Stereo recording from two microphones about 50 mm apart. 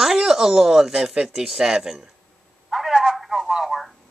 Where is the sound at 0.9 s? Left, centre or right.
Centre.